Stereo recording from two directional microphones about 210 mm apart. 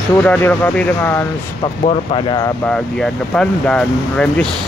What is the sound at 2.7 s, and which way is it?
Speech, 5° left (ahead or behind).